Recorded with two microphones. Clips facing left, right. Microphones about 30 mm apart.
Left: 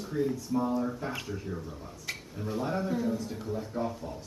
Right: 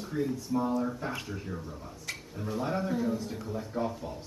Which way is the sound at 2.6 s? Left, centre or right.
Centre.